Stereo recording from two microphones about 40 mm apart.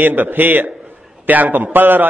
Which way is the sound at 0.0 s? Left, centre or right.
Right.